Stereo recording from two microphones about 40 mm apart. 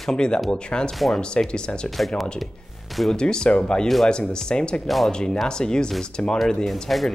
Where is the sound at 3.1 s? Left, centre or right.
Left.